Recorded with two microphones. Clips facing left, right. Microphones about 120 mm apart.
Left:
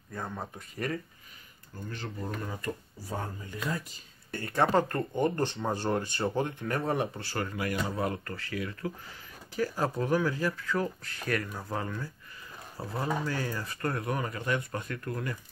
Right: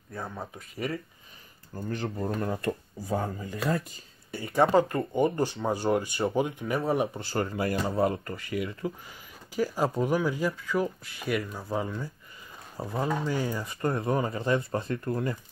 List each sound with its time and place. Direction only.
0.1 s speech: 5° right (ahead or behind)
1.8 s speech: 45° right (ahead or behind)
3.4 s speech: 90° right
4.3 s speech: 10° right (ahead or behind)
7.2 s speech: 25° right (ahead or behind)